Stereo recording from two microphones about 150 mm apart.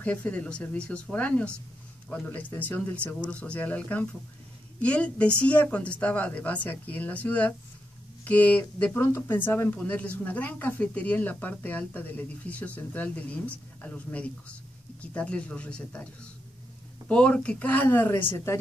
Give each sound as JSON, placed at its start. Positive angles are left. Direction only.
{"t": 0.0, "sound": "speech", "side_deg": 10}
{"t": 17.1, "sound": "speech", "side_deg": 5}